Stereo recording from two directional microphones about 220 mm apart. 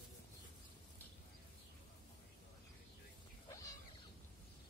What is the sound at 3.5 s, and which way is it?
Cat, 15° left (ahead or behind).